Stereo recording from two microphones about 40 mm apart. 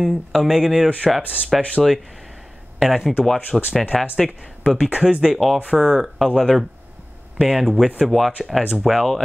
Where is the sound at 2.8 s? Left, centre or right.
Centre.